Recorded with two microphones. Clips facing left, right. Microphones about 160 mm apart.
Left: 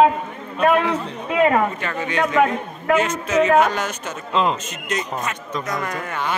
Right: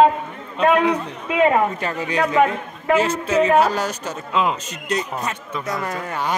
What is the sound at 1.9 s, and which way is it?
A man's voice, 35° right (ahead or behind).